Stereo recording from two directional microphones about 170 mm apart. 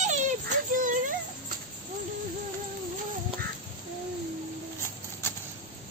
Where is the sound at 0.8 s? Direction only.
50° right (ahead or behind).